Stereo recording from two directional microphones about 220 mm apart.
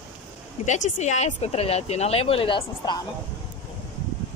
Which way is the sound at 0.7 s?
35° left (ahead or behind).